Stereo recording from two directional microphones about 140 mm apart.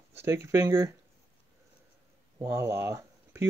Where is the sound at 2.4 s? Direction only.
15° right (ahead or behind).